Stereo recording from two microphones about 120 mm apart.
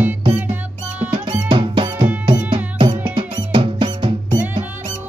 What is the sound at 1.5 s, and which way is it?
Music, 40° right (ahead or behind).